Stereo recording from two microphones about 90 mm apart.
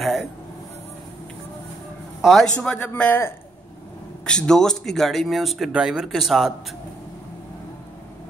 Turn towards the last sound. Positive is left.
turn(degrees=0)  # may be behind; listen again after turning